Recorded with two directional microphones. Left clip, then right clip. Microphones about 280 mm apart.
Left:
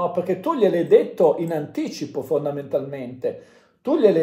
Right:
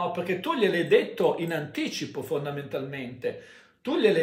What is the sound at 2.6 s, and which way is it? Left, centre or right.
Speech, centre.